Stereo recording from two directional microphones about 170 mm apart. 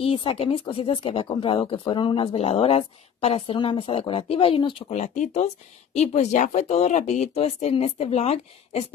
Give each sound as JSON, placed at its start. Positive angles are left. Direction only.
{"t": 0.0, "sound": "speech", "side_deg": 35}